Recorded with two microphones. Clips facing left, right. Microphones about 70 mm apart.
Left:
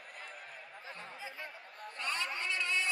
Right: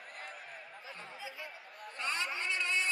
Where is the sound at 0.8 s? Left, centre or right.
Left.